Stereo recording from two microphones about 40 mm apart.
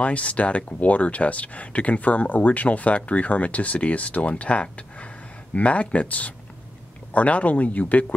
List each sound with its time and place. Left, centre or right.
0.0 s speech: left